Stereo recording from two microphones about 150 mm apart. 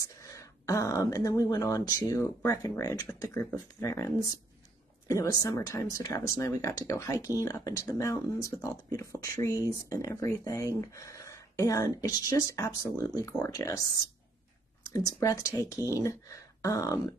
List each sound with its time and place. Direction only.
0.2 s a sound: 20° left (ahead or behind)
1.1 s speech: 25° left (ahead or behind)
14.9 s speech: 25° left (ahead or behind)